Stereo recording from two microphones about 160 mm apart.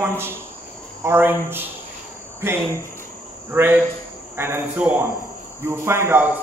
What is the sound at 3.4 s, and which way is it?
A man's voice, 15° right (ahead or behind).